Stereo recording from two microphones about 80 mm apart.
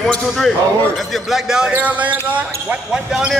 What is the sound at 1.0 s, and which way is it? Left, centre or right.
Speech, centre.